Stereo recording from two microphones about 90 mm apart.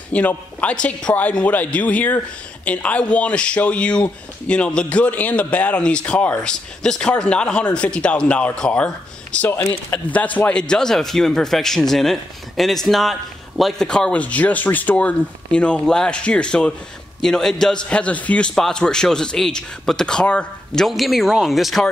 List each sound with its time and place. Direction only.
0.1 s speech: 15° left (ahead or behind)
20.8 s speech: centre (ahead or behind)